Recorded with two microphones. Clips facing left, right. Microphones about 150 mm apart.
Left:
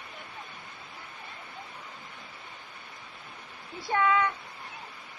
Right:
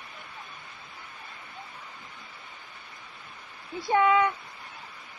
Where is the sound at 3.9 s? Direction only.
20° right (ahead or behind).